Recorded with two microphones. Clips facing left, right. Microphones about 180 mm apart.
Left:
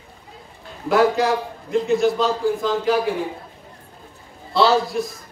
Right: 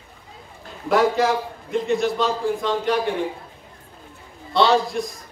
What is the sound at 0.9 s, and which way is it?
A man's voice, centre (ahead or behind).